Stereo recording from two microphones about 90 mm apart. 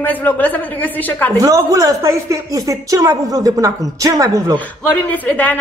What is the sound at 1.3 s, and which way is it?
Speech, 40° right (ahead or behind).